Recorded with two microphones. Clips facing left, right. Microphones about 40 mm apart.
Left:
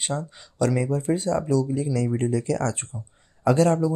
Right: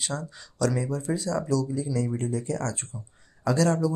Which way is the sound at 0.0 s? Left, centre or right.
Left.